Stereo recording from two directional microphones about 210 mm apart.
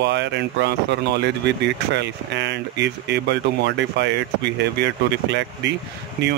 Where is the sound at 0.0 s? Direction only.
55° right (ahead or behind).